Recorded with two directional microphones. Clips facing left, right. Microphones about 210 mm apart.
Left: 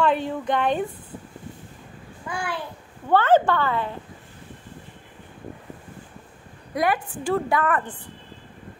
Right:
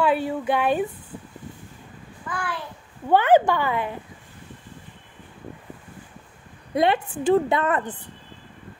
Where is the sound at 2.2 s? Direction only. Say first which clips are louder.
Left 1 dB; 10° left (ahead or behind).